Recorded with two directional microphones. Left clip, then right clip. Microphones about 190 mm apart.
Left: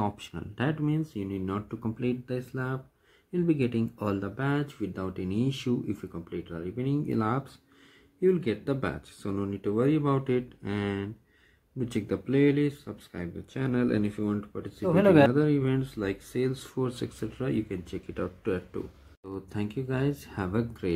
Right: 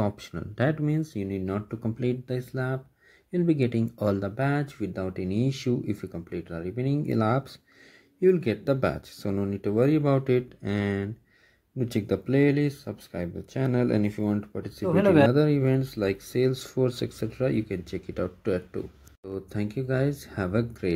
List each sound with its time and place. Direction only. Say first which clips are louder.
0.0 s speech: right 2 dB; 15° right (ahead or behind)
6.3 s speech: right 2 dB; 25° right (ahead or behind)
14.8 s speech: even; centre (ahead or behind)
15.3 s speech: right 3 dB; 20° right (ahead or behind)